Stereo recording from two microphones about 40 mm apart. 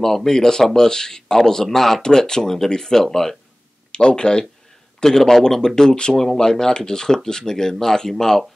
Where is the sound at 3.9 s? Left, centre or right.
Left.